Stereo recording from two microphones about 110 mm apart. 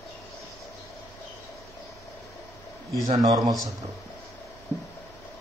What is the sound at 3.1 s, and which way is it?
Speech, 40° right (ahead or behind).